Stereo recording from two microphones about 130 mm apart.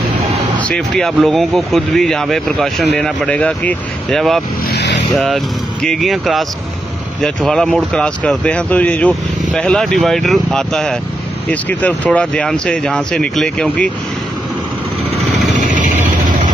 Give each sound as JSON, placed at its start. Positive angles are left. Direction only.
{"t": 0.7, "sound": "speech", "side_deg": 5}
{"t": 15.6, "sound": "vehicle", "side_deg": -90}